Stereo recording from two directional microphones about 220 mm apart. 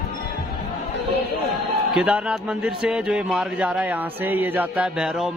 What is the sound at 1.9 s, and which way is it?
A man's voice, 5° right (ahead or behind).